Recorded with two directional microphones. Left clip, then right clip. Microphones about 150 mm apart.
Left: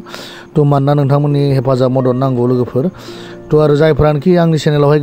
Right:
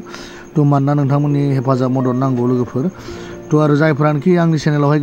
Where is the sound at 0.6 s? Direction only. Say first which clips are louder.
Left 4 dB; 50° left (ahead or behind).